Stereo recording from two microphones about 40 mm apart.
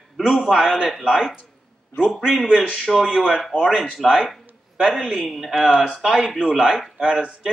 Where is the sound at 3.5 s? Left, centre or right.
Centre.